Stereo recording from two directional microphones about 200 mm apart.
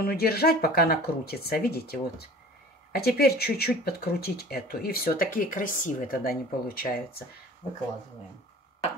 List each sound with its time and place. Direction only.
0.0 s speech: 50° left (ahead or behind)